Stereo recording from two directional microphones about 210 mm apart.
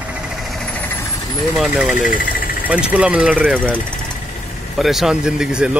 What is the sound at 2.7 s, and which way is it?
Speech, 5° right (ahead or behind).